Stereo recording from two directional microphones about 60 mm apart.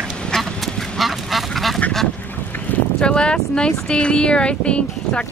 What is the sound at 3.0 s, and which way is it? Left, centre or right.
Speech, centre.